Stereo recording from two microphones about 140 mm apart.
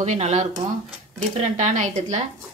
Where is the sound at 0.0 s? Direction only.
55° right (ahead or behind).